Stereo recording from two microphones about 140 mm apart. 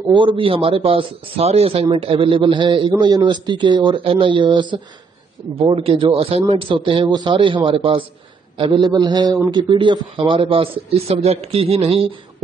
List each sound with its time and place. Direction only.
0.1 s a man's voice: 35° right (ahead or behind)